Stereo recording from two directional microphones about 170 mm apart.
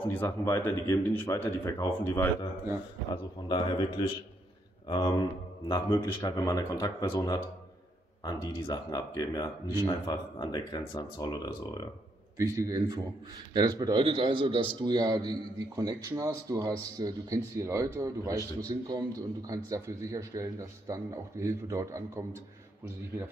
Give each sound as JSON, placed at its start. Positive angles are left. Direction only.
{"t": 0.0, "sound": "speech", "side_deg": 10}
{"t": 3.1, "sound": "speech", "side_deg": 25}
{"t": 12.4, "sound": "a man's voice", "side_deg": -20}